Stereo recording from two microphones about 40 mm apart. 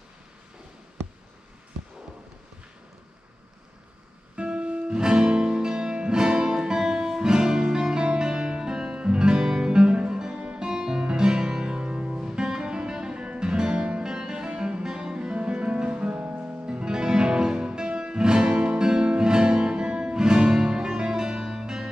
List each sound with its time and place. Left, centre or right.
4.4 s music: right
10.4 s music: right
10.7 s music: centre; by 16.8 s right
16.8 s music: centre